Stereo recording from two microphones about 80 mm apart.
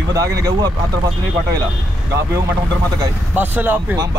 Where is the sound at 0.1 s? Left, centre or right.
Right.